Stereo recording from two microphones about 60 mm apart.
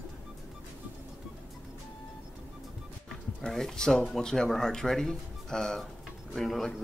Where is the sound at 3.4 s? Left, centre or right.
Centre.